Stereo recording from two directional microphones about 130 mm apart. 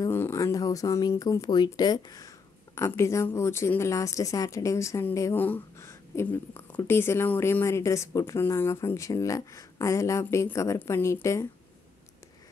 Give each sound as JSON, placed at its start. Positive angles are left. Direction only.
{"t": 0.0, "sound": "speech", "side_deg": 20}